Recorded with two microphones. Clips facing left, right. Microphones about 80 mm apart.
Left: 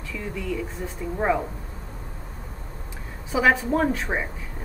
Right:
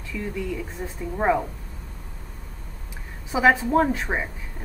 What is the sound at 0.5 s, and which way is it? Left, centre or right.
Speech, centre.